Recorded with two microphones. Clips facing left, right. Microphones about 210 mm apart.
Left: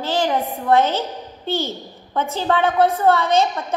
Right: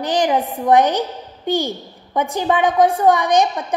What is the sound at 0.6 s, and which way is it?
A woman's voice, 15° right (ahead or behind).